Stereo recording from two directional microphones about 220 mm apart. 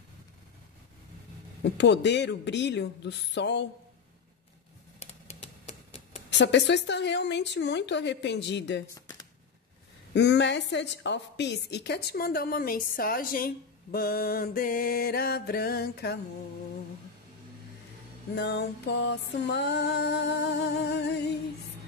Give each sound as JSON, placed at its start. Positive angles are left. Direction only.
{"t": 1.6, "sound": "a woman's voice", "side_deg": 50}
{"t": 5.0, "sound": "typewriter", "side_deg": 30}
{"t": 6.3, "sound": "a woman's voice", "side_deg": 50}
{"t": 10.1, "sound": "a woman's voice", "side_deg": 50}
{"t": 18.3, "sound": "a woman's voice", "side_deg": 50}